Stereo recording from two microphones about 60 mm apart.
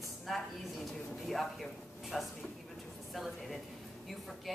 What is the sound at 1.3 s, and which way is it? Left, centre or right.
A woman's voice, centre.